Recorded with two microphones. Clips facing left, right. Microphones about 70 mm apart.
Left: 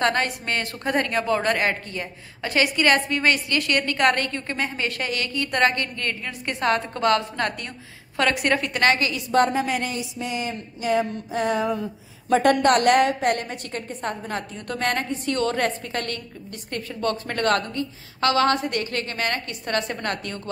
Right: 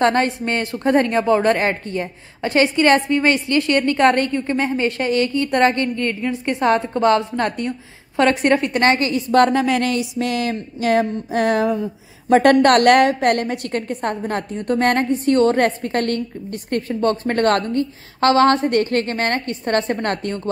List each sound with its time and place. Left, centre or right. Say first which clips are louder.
0.0 s a woman's voice: right 6 dB; right
9.3 s a woman's voice: right 5 dB; right